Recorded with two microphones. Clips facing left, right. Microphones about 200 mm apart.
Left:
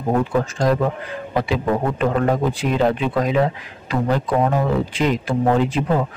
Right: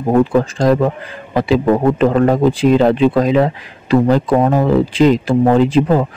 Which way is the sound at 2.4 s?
90° right.